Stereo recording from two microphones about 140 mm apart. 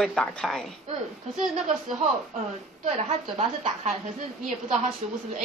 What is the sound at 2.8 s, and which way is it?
A woman's voice, 60° right (ahead or behind).